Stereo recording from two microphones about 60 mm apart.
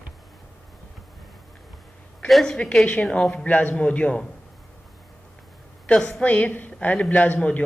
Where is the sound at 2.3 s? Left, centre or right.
Centre.